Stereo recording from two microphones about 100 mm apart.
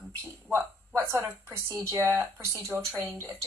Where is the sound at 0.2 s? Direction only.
25° right (ahead or behind).